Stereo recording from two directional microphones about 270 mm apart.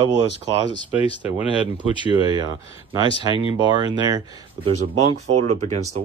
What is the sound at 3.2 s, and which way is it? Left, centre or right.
Speech, centre.